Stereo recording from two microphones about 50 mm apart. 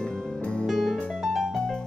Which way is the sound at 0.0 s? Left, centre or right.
Centre.